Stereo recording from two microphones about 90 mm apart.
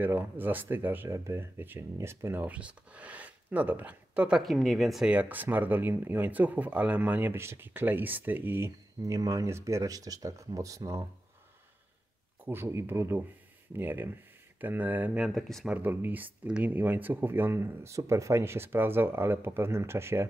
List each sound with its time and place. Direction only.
0.0 s speech: 20° right (ahead or behind)
2.4 s speech: 15° right (ahead or behind)
4.4 s speech: centre (ahead or behind)
5.0 s speech: 15° right (ahead or behind); by 11.1 s 35° right (ahead or behind)
12.4 s speech: 25° right (ahead or behind)
15.2 s speech: 5° left (ahead or behind)
15.6 s speech: 20° right (ahead or behind)